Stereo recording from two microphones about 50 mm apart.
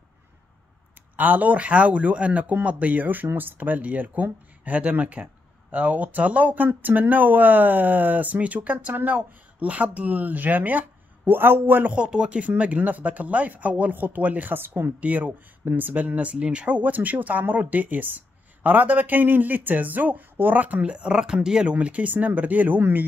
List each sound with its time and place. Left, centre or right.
1.1 s speech: right
11.9 s speech: right
15.0 s speech: right
20.9 s speech: centre; by 22.8 s right